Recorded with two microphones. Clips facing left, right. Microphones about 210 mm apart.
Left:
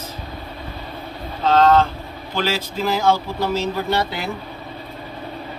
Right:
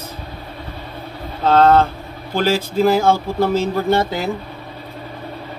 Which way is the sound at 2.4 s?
50° right (ahead or behind).